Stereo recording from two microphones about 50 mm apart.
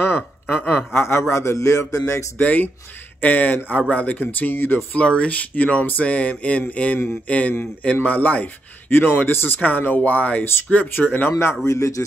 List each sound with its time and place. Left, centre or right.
0.0 s speech: left
0.9 s a man's voice: left
2.3 s a man's voice: left
4.9 s a man's voice: left
8.9 s a man's voice: left
11.2 s a man's voice: left